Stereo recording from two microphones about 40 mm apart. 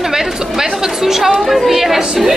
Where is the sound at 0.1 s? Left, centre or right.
Centre.